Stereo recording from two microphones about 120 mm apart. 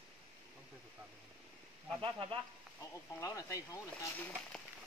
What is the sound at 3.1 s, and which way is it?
Speech, 30° left (ahead or behind).